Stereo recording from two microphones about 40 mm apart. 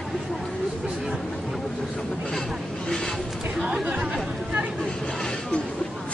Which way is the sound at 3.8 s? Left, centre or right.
Right.